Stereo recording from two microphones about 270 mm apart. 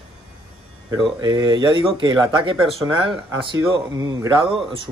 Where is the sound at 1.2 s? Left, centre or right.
Centre.